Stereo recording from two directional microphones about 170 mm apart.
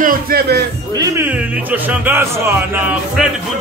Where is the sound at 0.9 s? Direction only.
20° right (ahead or behind).